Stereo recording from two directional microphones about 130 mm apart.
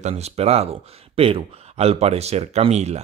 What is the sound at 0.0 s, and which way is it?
Speech, 55° right (ahead or behind).